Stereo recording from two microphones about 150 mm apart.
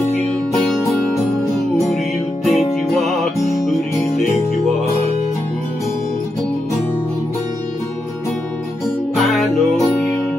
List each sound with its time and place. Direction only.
2.4 s music: centre (ahead or behind)
3.3 s music: 20° left (ahead or behind)
8.8 s music: centre (ahead or behind)